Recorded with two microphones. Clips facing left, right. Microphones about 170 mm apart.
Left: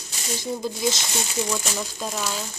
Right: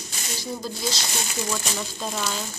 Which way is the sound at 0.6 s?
20° left (ahead or behind).